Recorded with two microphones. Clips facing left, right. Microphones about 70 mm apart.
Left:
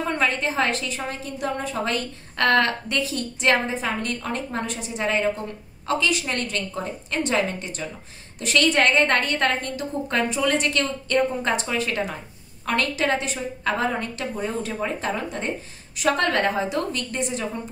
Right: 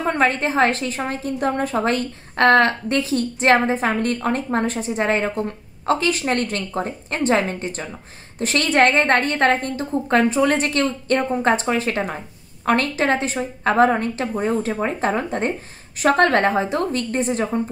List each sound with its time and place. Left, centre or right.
0.0 s a woman's voice: right